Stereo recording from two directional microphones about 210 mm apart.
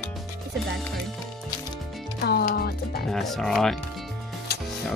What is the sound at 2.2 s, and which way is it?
Speech, 50° left (ahead or behind).